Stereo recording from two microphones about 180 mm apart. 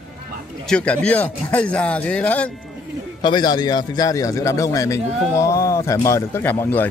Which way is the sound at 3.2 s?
25° left (ahead or behind).